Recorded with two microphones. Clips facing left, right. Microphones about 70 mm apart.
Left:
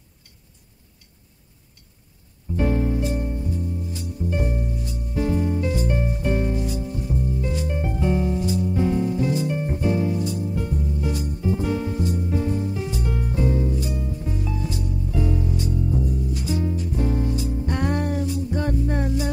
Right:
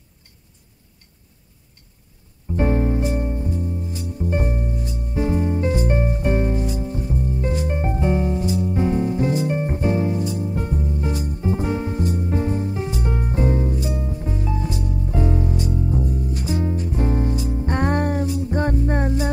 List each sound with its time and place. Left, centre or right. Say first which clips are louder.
2.5 s music: right 2 dB; right